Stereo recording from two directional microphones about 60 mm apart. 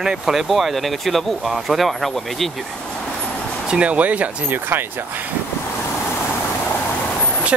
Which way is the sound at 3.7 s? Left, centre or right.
Right.